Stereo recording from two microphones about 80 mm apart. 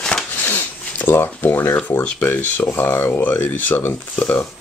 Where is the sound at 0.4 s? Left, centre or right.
Left.